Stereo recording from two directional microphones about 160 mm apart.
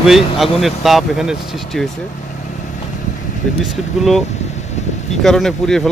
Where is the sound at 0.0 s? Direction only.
Centre (ahead or behind).